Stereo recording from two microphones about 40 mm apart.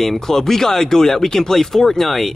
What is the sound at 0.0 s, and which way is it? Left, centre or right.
Speech, centre.